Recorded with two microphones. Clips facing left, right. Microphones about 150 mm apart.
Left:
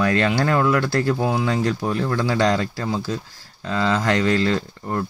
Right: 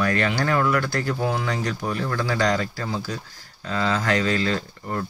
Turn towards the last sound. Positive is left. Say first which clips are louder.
# left 3 dB
turn(degrees=25)  # may be behind; listen again after turning